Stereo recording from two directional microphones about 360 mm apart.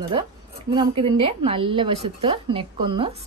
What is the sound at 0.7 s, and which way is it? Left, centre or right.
A woman's voice, centre.